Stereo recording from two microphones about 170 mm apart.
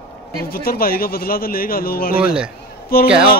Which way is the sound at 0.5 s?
60° left (ahead or behind).